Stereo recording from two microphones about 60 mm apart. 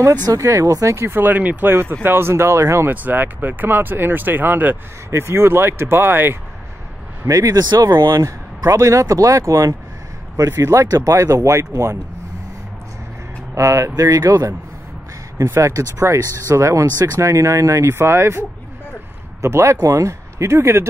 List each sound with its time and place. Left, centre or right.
0.1 s speech: right
1.3 s speech: right
1.7 s speech: right
2.9 s speech: right
5.1 s speech: right
7.2 s speech: right
13.6 s speech: right
15.3 s speech: right
19.4 s speech: right